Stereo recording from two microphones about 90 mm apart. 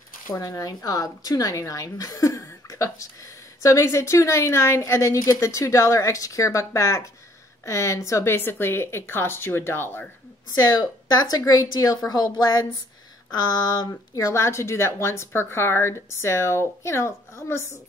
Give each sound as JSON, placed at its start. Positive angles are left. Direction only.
{"t": 0.3, "sound": "a woman's voice", "side_deg": 40}
{"t": 10.5, "sound": "a woman's voice", "side_deg": 45}